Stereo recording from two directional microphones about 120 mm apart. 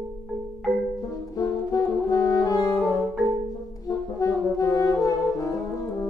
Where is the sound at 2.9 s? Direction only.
Centre (ahead or behind).